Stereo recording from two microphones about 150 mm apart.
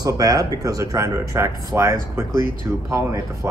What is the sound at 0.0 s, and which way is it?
Speech, 25° right (ahead or behind).